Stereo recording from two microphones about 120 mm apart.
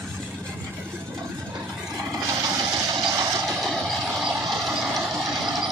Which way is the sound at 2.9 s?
30° right (ahead or behind).